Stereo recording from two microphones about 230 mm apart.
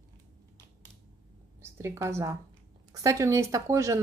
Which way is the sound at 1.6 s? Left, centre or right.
Centre.